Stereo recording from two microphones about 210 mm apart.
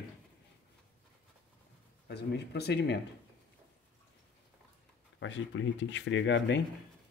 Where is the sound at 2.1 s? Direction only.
50° left (ahead or behind).